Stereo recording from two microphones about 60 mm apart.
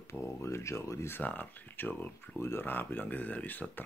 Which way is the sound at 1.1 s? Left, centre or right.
Left.